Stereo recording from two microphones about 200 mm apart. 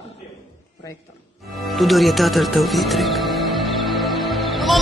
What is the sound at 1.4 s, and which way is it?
Music, centre (ahead or behind).